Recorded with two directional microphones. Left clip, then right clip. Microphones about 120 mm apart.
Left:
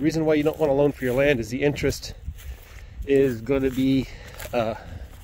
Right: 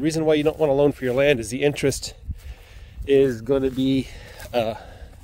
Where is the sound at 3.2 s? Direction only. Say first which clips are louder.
Right 2 dB; 30° right (ahead or behind).